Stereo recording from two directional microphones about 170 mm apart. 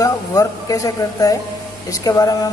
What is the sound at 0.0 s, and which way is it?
A man's voice, 20° left (ahead or behind).